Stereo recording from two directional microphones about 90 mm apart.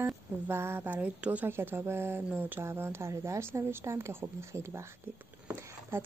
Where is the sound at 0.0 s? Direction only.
25° right (ahead or behind).